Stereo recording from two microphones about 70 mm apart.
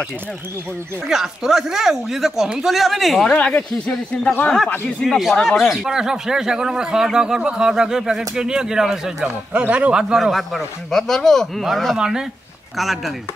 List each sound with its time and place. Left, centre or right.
1.0 s speech: centre
3.3 s speech: centre
5.0 s speech: centre
9.5 s speech: centre
12.0 s speech: centre